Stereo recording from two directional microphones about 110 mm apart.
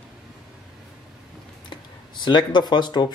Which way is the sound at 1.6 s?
45° left (ahead or behind).